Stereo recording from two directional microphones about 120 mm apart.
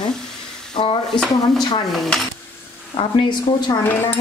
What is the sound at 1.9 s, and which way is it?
Stir, centre (ahead or behind).